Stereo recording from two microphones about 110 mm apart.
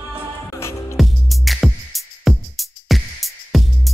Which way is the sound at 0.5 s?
25° left (ahead or behind).